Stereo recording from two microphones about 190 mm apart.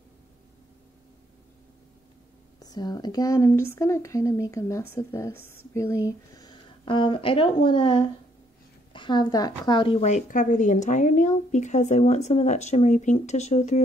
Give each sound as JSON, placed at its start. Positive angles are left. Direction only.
{"t": 2.6, "sound": "a woman's voice", "side_deg": 20}